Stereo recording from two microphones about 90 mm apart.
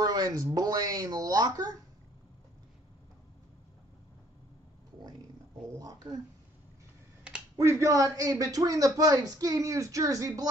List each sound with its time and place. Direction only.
0.0 s speech: 45° right (ahead or behind)
5.8 s speech: 45° right (ahead or behind)
7.5 s a man's voice: 35° right (ahead or behind)